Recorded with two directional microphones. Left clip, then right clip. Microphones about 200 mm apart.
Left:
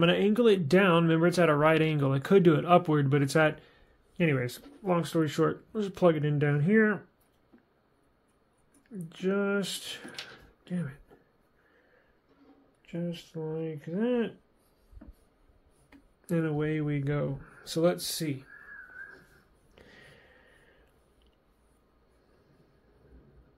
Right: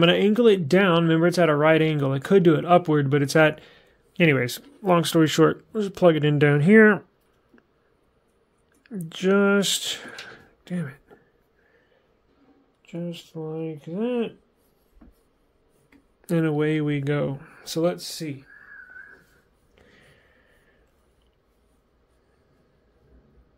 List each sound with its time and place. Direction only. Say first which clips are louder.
0.0 s speech: right 6 dB; 30° right (ahead or behind)
5.7 s speech: right 6 dB; 25° right (ahead or behind)
6.1 s speech: right 10 dB; 45° right (ahead or behind)
8.8 s speech: right 9 dB; 50° right (ahead or behind)
10.6 s a sound: right 5 dB; 35° right (ahead or behind)
12.8 s speech: right 3 dB; 20° right (ahead or behind)
16.3 s speech: right 7 dB; 40° right (ahead or behind)
17.8 s speech: right 1 dB; centre (ahead or behind)
19.7 s a sound: left 1 dB; 15° left (ahead or behind)